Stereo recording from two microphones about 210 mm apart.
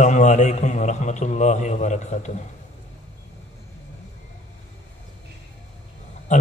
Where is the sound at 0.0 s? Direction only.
35° left (ahead or behind).